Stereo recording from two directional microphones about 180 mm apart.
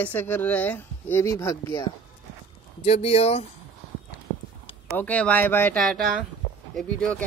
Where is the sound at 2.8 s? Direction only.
35° left (ahead or behind).